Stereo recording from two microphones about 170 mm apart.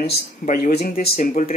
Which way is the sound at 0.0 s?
70° left (ahead or behind).